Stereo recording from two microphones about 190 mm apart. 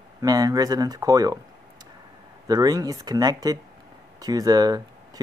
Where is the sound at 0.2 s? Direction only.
20° right (ahead or behind).